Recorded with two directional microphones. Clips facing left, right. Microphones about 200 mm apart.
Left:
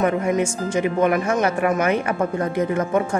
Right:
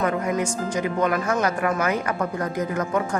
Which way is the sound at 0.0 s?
25° left (ahead or behind).